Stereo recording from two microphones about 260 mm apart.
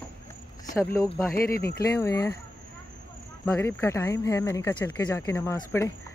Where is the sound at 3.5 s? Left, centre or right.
Centre.